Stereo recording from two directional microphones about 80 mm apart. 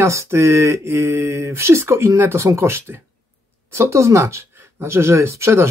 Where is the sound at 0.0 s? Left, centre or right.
Right.